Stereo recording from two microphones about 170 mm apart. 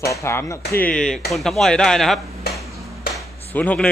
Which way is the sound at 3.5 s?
10° left (ahead or behind).